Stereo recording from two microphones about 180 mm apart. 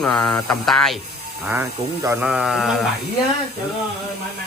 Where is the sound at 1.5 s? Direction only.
15° right (ahead or behind).